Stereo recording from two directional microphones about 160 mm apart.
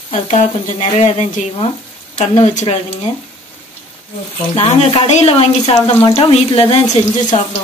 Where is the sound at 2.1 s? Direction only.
45° left (ahead or behind).